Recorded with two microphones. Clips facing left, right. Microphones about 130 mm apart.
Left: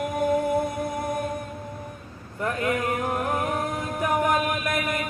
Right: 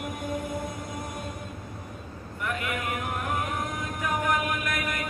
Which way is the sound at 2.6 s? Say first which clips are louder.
Left 6 dB; 35° left (ahead or behind).